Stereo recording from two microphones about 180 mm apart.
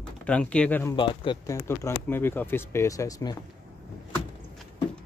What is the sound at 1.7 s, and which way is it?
Speech, 15° left (ahead or behind).